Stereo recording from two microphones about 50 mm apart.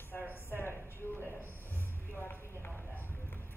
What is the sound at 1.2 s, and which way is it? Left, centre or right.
Speech, left.